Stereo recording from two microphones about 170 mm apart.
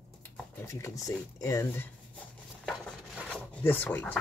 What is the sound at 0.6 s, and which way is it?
Speech, 20° left (ahead or behind).